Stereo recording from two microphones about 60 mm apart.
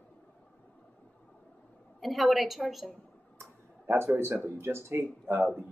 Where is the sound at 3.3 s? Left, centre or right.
Right.